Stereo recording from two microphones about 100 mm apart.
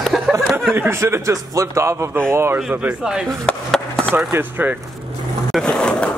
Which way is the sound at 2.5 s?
10° right (ahead or behind).